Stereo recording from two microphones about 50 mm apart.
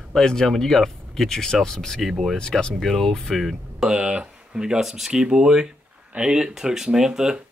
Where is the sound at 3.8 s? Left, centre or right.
Centre.